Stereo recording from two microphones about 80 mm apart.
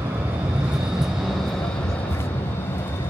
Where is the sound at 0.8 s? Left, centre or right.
Centre.